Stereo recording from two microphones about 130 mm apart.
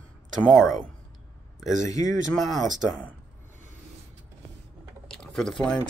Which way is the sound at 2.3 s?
Centre (ahead or behind).